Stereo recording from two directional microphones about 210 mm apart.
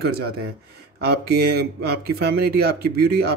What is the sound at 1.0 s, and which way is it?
Speech, 50° right (ahead or behind).